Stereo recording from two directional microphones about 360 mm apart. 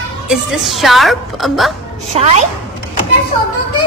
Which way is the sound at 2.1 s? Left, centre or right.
Centre.